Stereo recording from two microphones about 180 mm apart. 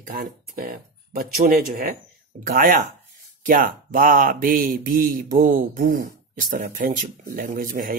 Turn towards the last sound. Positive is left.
turn(degrees=-50)  # may be behind; listen again after turning